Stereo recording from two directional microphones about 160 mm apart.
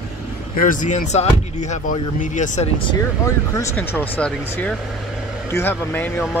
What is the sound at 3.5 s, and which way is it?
Speech, 15° left (ahead or behind).